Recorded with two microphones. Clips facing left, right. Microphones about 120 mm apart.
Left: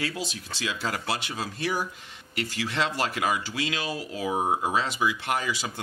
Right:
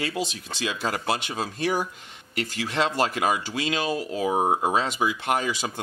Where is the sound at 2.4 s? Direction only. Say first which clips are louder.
Right 3 dB; 45° right (ahead or behind).